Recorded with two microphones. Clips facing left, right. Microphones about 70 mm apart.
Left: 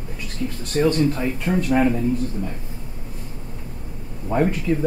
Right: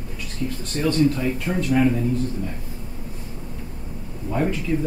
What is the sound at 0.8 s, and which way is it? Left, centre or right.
Speech, left.